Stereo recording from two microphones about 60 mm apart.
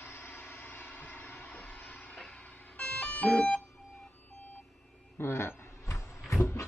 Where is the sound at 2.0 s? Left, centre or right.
Left.